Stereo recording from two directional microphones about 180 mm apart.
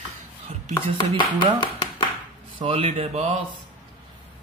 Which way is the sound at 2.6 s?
35° right (ahead or behind).